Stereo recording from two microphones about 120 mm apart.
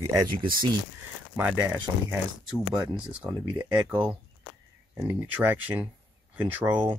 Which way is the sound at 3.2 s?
15° right (ahead or behind).